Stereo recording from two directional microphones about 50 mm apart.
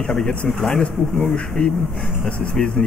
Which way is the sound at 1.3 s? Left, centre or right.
Centre.